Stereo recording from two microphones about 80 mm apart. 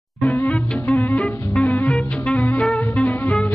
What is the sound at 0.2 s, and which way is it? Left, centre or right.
Music, centre.